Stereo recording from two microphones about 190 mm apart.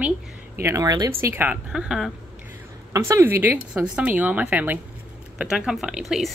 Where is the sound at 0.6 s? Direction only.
15° right (ahead or behind).